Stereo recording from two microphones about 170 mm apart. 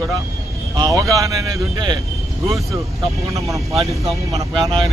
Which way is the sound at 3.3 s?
20° right (ahead or behind).